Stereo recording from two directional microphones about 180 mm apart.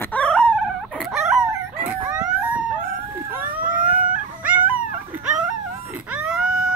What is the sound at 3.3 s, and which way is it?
Vehicle, 10° right (ahead or behind).